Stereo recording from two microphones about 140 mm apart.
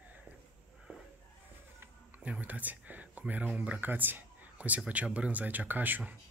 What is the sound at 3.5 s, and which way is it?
Speech, 10° right (ahead or behind).